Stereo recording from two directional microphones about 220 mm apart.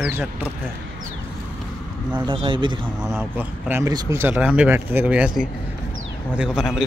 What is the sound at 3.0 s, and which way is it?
Speech, 10° right (ahead or behind).